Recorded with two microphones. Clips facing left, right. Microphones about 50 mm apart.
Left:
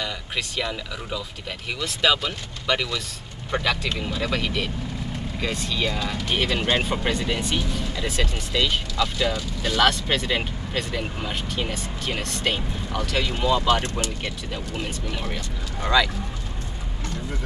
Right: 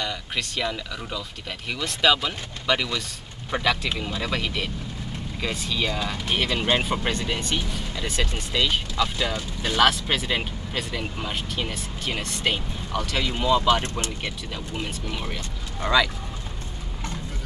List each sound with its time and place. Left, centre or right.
0.0 s speech: centre
15.1 s speech: centre